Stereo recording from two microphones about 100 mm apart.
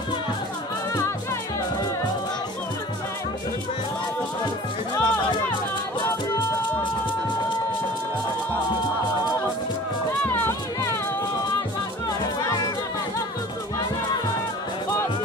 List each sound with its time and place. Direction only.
5.0 s music: 50° left (ahead or behind)
10.2 s music: 20° left (ahead or behind)
12.4 s music: 40° left (ahead or behind)